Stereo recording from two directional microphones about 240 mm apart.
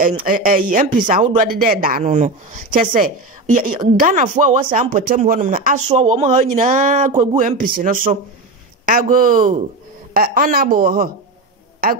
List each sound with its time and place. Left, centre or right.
0.2 s speech: right